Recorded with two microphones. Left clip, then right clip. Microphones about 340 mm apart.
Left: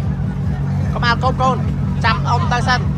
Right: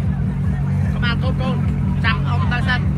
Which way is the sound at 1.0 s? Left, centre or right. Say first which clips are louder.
Left 9 dB; centre.